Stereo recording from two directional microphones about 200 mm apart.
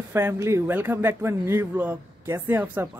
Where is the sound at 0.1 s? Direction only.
15° right (ahead or behind).